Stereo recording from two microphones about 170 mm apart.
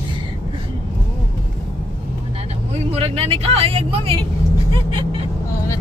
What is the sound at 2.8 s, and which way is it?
Speech, 35° right (ahead or behind).